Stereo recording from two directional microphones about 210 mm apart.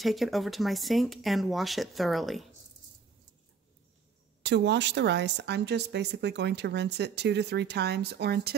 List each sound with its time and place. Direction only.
0.0 s speech: centre (ahead or behind)
4.4 s a woman's voice: 55° right (ahead or behind)